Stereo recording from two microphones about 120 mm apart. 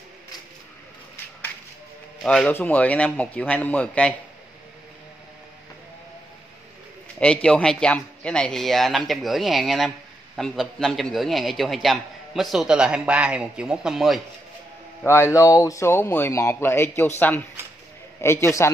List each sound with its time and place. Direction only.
2.2 s a man's voice: 5° left (ahead or behind)
7.2 s a man's voice: 10° left (ahead or behind)
15.0 s speech: 20° left (ahead or behind)
18.2 s speech: 20° left (ahead or behind)